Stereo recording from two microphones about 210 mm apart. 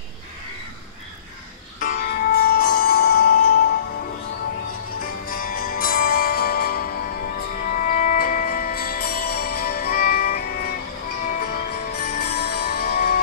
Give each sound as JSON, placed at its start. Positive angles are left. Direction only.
{"t": 1.8, "sound": "music", "side_deg": 45}
{"t": 5.0, "sound": "music", "side_deg": 45}